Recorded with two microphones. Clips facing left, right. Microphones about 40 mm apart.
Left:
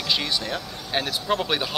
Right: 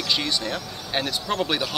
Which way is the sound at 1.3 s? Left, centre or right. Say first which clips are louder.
Left 1 dB; centre.